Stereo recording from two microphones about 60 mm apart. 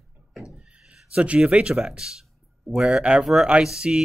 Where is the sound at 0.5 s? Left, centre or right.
Centre.